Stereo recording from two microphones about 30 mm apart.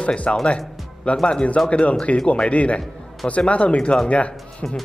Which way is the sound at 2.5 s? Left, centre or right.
Left.